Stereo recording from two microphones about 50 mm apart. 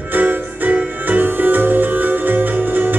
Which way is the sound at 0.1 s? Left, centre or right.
Right.